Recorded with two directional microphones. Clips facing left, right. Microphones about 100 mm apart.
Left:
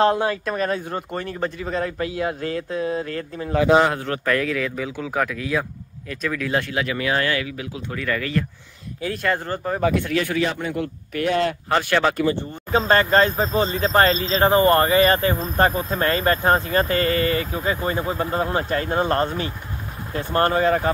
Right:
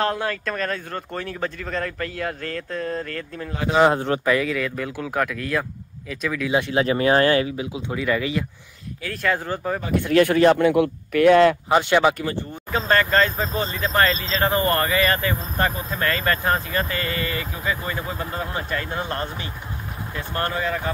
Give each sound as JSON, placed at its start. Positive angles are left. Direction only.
{"t": 0.0, "sound": "speech", "side_deg": 20}
{"t": 1.1, "sound": "speech", "side_deg": 5}
{"t": 3.8, "sound": "speech", "side_deg": -25}
{"t": 4.2, "sound": "speech", "side_deg": -5}
{"t": 6.7, "sound": "speech", "side_deg": -30}
{"t": 9.1, "sound": "speech", "side_deg": 0}
{"t": 10.1, "sound": "speech", "side_deg": -50}
{"t": 10.6, "sound": "speech", "side_deg": -90}
{"t": 12.7, "sound": "speech", "side_deg": 30}